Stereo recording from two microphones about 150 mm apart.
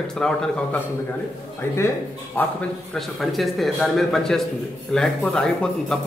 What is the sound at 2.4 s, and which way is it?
Speech, 10° left (ahead or behind).